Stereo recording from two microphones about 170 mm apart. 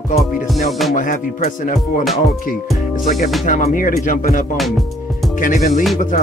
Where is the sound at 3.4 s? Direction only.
50° left (ahead or behind).